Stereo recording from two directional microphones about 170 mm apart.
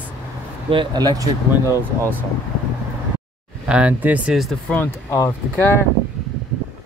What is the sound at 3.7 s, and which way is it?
Speech, 10° right (ahead or behind).